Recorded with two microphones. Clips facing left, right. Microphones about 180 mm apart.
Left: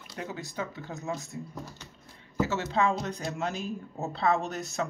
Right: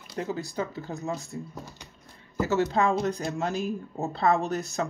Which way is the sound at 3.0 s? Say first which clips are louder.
Right 4 dB; 35° right (ahead or behind).